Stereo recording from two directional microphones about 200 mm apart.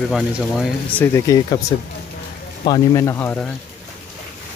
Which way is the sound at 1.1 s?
15° left (ahead or behind).